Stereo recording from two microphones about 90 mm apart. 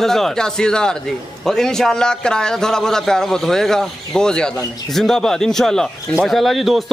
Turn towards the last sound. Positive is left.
turn(degrees=0)  # may be behind; listen again after turning